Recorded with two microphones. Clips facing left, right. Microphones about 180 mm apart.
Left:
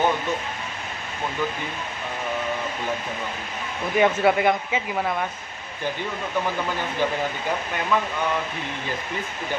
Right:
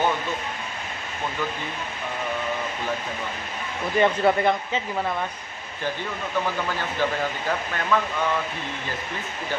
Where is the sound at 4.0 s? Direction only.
10° left (ahead or behind).